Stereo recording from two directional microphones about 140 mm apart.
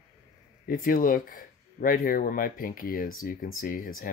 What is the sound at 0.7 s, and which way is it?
Speech, 90° left.